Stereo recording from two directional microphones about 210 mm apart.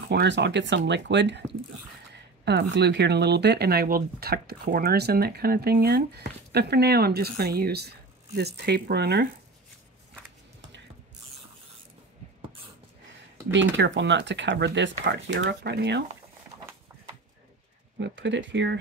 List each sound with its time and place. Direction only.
0.1 s speech: 55° right (ahead or behind)
2.4 s speech: 55° right (ahead or behind)
13.5 s speech: 60° right (ahead or behind)
17.9 s speech: 55° right (ahead or behind)